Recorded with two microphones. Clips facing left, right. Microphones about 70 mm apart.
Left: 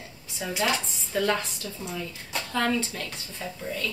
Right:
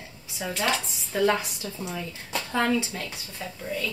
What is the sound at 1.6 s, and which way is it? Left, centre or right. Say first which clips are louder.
Speech: right 1 dB; centre.